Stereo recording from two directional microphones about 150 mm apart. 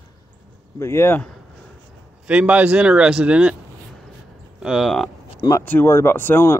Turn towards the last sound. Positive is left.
turn(degrees=15)  # may be behind; listen again after turning